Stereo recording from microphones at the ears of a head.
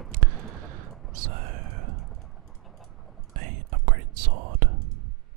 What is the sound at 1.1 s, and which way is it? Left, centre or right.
Whispering, right.